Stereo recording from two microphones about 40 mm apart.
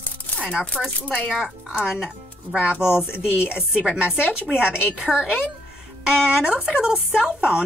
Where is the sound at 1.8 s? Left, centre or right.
Centre.